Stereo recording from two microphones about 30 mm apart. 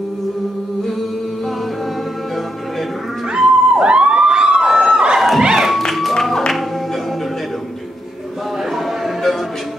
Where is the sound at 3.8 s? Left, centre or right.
Right.